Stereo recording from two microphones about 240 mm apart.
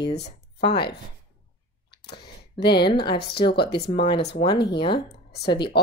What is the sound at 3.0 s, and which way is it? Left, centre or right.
Speech, left.